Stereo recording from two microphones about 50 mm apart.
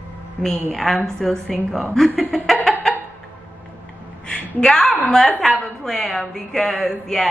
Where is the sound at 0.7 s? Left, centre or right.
Centre.